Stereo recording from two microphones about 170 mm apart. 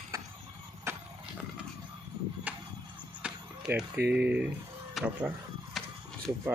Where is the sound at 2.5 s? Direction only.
10° right (ahead or behind).